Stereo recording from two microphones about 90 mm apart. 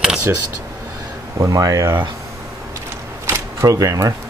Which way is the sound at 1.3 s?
40° right (ahead or behind).